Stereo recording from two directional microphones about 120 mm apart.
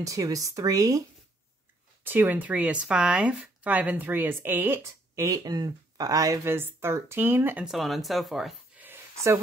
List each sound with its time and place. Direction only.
0.0 s speech: 30° right (ahead or behind)
2.0 s speech: 15° right (ahead or behind)
7.6 s speech: centre (ahead or behind)
8.7 s a sound: 20° right (ahead or behind)